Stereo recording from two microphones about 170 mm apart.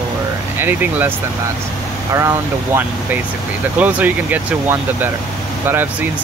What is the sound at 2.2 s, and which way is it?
Speech, 15° right (ahead or behind).